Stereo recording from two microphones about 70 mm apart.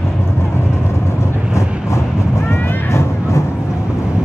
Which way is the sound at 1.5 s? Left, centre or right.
Left.